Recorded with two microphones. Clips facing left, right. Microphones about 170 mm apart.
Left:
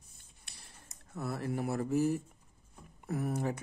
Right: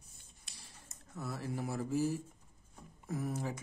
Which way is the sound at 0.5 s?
60° left (ahead or behind).